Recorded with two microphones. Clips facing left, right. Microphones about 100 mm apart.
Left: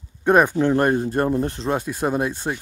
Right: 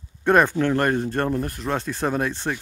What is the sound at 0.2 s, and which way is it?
Speech, 10° left (ahead or behind).